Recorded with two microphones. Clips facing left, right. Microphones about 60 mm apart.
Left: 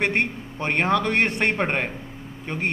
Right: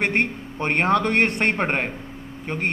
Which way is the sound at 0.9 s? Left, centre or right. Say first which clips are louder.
Right 2 dB; right.